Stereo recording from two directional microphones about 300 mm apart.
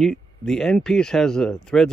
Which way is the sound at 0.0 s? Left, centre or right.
Centre.